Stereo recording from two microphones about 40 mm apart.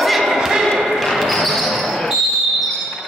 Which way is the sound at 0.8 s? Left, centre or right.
Centre.